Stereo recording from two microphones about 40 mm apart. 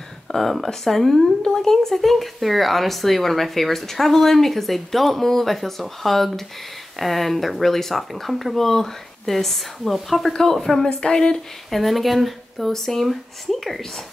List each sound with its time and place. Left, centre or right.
0.3 s a woman's voice: centre
10.9 s a woman's voice: centre
11.7 s speech: centre